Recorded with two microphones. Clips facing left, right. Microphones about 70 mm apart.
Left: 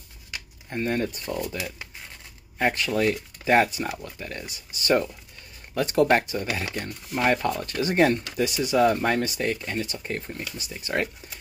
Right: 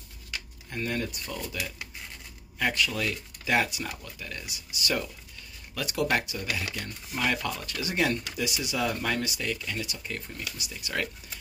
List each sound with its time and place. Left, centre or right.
0.7 s speech: left
2.6 s speech: left